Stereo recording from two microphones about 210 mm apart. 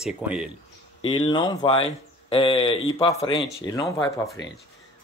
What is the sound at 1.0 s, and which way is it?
Speech, 25° left (ahead or behind).